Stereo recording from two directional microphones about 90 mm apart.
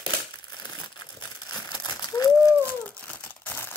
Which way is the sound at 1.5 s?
50° left (ahead or behind).